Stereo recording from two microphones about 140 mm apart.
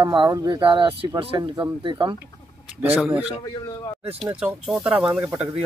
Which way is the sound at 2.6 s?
5° right (ahead or behind).